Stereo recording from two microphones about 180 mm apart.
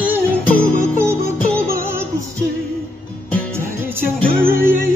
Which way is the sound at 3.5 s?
10° right (ahead or behind).